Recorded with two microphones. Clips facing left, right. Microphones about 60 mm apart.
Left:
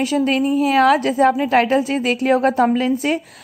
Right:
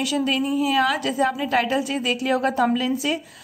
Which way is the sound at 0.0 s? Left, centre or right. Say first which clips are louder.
Left 5 dB; left.